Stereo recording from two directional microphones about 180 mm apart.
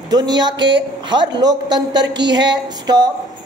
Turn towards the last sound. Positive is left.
turn(degrees=-20)  # may be behind; listen again after turning